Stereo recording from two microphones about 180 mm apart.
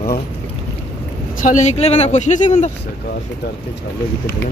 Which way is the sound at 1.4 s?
40° left (ahead or behind).